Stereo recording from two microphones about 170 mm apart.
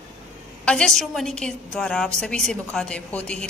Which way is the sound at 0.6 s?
5° left (ahead or behind).